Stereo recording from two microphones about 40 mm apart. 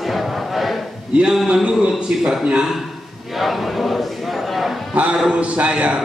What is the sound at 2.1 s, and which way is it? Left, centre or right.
Speech, right.